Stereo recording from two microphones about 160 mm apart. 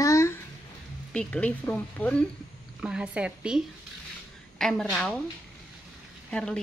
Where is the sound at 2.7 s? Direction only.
5° right (ahead or behind).